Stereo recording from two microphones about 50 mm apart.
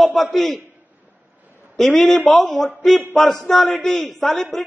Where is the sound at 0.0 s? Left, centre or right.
Centre.